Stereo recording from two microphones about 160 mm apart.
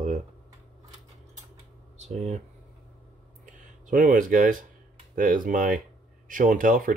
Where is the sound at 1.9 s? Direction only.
45° right (ahead or behind).